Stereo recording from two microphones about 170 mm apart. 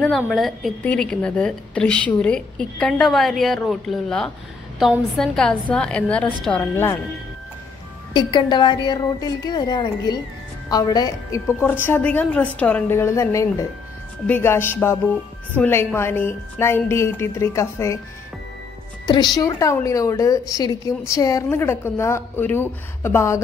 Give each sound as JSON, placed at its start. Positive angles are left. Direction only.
{"t": 0.3, "sound": "a woman's voice", "side_deg": 0}
{"t": 8.1, "sound": "a woman's voice", "side_deg": 25}
{"t": 11.6, "sound": "a woman's voice", "side_deg": 10}
{"t": 19.0, "sound": "a woman's voice", "side_deg": 25}